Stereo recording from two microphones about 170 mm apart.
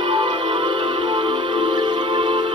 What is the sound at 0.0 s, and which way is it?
Music, 30° right (ahead or behind).